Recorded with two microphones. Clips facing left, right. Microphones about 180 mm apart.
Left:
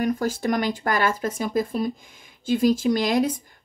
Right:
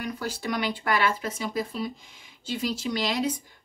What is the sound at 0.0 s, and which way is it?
A woman's voice, 45° left (ahead or behind).